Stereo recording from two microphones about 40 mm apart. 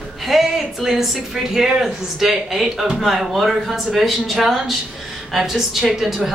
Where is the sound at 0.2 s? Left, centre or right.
Centre.